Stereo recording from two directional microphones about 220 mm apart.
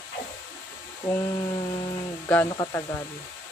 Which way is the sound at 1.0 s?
15° left (ahead or behind).